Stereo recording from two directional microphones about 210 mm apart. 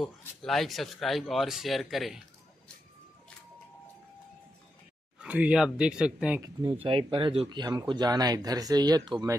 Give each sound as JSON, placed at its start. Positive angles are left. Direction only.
{"t": 0.0, "sound": "speech", "side_deg": 0}
{"t": 5.2, "sound": "speech", "side_deg": -5}
{"t": 6.6, "sound": "speech", "side_deg": -25}